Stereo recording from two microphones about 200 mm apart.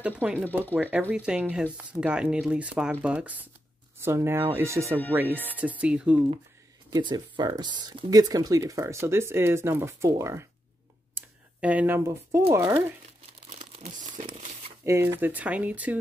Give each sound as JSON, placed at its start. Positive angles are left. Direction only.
{"t": 0.0, "sound": "speech", "side_deg": -5}
{"t": 6.9, "sound": "speech", "side_deg": -20}
{"t": 13.0, "sound": "crumpling", "side_deg": -35}
{"t": 14.9, "sound": "speech", "side_deg": -15}